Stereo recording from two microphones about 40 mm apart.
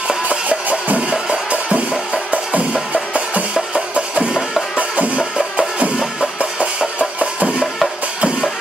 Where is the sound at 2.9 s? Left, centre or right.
Right.